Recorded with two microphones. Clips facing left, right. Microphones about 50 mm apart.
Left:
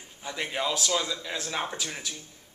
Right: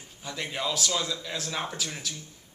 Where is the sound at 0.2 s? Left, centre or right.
Centre.